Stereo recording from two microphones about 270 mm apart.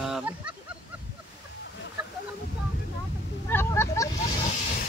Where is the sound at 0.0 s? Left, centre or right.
Centre.